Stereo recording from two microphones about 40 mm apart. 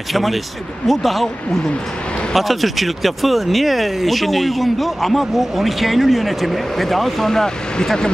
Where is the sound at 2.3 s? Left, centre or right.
Centre.